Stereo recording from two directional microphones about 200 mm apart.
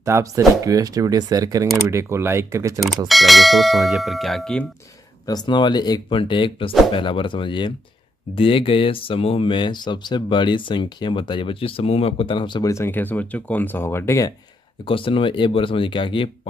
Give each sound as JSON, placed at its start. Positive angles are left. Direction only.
{"t": 0.0, "sound": "speech", "side_deg": -15}
{"t": 3.1, "sound": "bell", "side_deg": 0}
{"t": 5.2, "sound": "speech", "side_deg": 20}
{"t": 14.9, "sound": "speech", "side_deg": 25}